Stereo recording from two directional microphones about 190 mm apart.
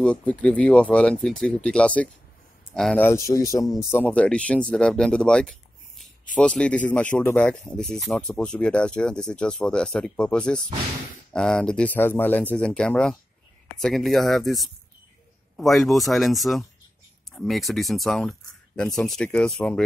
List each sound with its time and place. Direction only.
0.0 s speech: 5° left (ahead or behind)
3.3 s speech: 20° left (ahead or behind)
3.9 s speech: 5° left (ahead or behind)